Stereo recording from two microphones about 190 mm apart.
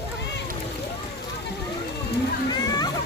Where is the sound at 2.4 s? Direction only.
20° left (ahead or behind).